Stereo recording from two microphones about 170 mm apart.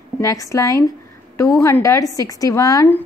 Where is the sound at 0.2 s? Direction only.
20° left (ahead or behind).